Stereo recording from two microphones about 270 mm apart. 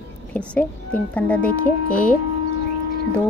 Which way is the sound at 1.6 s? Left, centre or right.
Left.